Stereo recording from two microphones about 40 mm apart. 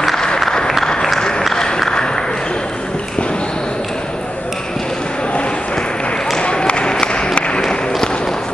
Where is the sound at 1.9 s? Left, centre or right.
Centre.